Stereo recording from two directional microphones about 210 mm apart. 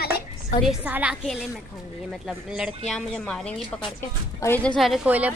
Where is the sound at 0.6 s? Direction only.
5° right (ahead or behind).